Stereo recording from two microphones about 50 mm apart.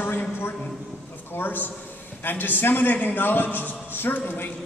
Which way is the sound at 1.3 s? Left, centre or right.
Left.